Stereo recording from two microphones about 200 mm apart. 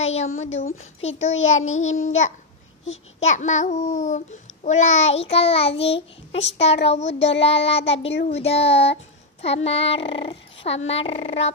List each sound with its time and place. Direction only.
0.0 s a woman's voice: 35° left (ahead or behind)
0.4 s child singing: 30° left (ahead or behind)